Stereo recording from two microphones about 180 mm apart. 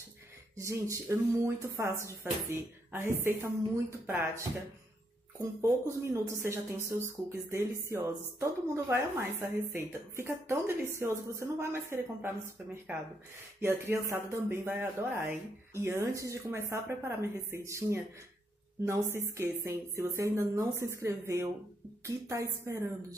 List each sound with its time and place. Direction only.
0.6 s speech: 15° right (ahead or behind)
19.1 s speech: 15° right (ahead or behind)